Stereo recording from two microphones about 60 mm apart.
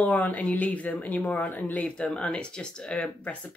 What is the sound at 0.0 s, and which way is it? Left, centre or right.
Speech, left.